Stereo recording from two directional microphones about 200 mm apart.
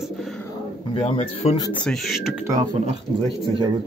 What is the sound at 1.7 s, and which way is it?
Speech, 5° left (ahead or behind).